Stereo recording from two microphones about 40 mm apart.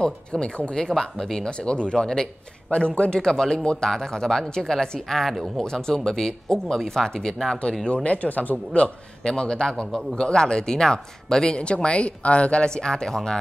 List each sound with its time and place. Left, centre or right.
0.0 s a man's voice: left
0.8 s speech: centre
7.9 s speech: left
8.7 s a man's voice: left